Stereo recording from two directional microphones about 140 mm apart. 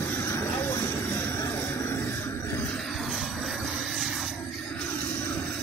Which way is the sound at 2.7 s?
Centre (ahead or behind).